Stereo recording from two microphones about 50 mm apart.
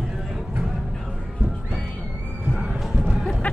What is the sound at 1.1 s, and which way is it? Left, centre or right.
Music, centre.